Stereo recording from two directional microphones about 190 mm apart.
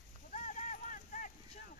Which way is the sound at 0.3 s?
40° left (ahead or behind).